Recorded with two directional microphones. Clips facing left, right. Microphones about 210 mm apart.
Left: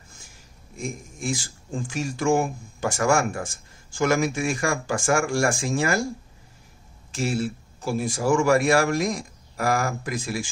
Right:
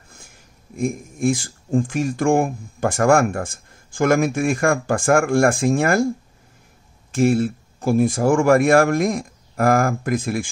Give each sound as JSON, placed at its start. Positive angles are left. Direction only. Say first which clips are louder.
{"t": 0.7, "sound": "speech", "louder": "right 9 dB", "side_deg": -55}
{"t": 7.1, "sound": "speech", "louder": "right 9 dB", "side_deg": -50}